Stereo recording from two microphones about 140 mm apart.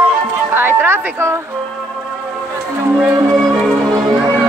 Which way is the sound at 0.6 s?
15° right (ahead or behind).